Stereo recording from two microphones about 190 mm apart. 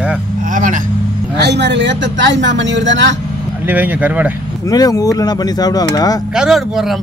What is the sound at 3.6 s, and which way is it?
Speech, 10° right (ahead or behind).